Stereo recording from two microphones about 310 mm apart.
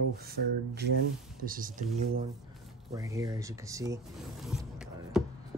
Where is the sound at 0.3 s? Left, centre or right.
Right.